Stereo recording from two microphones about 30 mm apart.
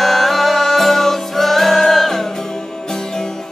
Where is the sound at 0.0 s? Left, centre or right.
Centre.